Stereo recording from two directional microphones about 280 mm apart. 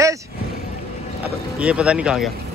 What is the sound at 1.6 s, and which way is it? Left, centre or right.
Speech, centre.